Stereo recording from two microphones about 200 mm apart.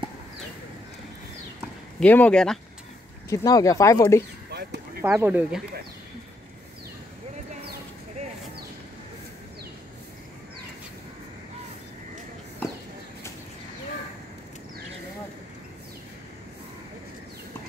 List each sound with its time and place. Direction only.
2.0 s speech: 5° left (ahead or behind)
3.3 s speech: 20° left (ahead or behind)
4.5 s a sound: 55° right (ahead or behind)
5.0 s speech: 10° right (ahead or behind)